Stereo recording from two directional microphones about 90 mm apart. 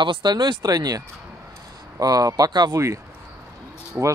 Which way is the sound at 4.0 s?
15° right (ahead or behind).